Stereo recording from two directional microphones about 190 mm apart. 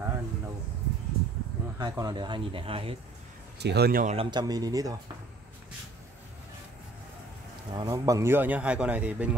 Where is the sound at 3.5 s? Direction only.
60° right (ahead or behind).